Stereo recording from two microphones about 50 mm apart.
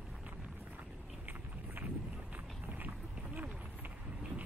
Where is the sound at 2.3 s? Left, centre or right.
Right.